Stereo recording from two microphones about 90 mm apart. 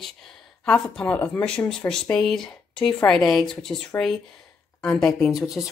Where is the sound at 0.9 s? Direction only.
15° left (ahead or behind).